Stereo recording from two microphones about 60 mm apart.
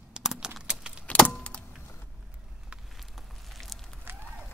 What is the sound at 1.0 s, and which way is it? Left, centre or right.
Vehicle, centre.